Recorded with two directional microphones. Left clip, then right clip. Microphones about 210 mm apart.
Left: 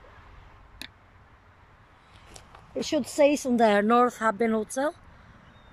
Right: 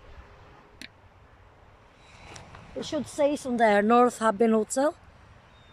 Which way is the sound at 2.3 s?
10° left (ahead or behind).